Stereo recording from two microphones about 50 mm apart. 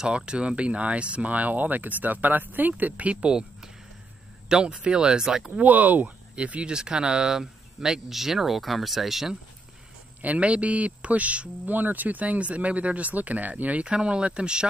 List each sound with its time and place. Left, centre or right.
0.0 s speech: right
5.5 s speech: right; by 9.3 s centre
10.2 s speech: right